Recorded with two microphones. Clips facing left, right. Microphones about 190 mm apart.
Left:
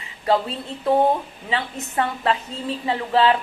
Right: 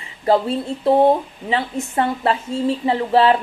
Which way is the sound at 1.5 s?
30° right (ahead or behind).